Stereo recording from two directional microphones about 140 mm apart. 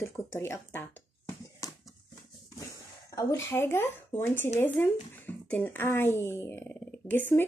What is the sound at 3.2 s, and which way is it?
Speech, 20° left (ahead or behind).